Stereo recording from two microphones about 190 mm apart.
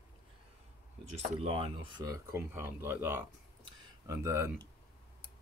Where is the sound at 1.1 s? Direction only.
30° right (ahead or behind); by 4.5 s 15° right (ahead or behind).